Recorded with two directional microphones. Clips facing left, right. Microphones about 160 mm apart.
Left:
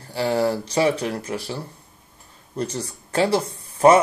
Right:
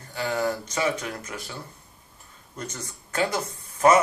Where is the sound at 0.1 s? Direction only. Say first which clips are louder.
Left 6 dB; 30° left (ahead or behind).